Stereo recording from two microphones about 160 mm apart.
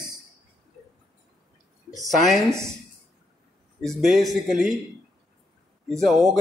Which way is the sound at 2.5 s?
20° right (ahead or behind).